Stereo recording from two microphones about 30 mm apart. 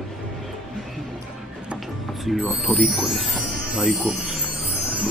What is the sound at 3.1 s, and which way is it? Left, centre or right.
Music, centre.